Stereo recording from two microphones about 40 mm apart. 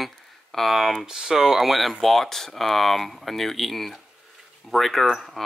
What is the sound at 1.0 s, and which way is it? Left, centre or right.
Speech, centre.